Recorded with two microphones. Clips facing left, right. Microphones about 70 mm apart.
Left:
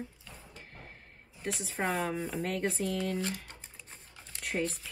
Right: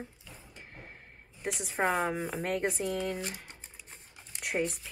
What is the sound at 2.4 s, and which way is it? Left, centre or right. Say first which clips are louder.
Speech: even; right.